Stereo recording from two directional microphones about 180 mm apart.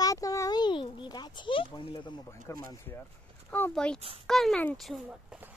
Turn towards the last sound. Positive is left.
turn(degrees=0)  # may be behind; listen again after turning